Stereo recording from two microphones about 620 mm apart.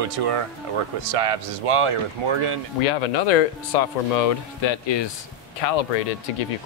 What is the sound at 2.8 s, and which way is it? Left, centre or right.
Speech, left.